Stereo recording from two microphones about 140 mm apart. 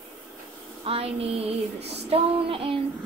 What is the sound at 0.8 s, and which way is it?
Female singing, 45° right (ahead or behind).